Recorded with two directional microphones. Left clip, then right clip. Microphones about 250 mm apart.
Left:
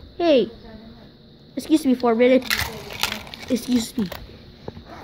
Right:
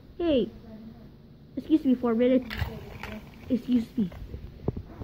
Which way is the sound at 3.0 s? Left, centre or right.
Left.